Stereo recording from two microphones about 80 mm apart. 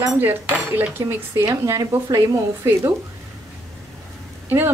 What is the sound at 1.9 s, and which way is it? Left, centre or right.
Speech, right.